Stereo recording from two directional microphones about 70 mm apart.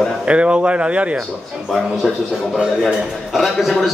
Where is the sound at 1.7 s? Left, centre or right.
Centre.